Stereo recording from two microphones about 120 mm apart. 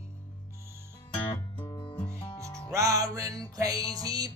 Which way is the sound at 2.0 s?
20° left (ahead or behind).